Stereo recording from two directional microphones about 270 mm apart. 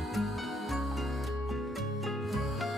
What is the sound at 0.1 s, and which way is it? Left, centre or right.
Music, centre.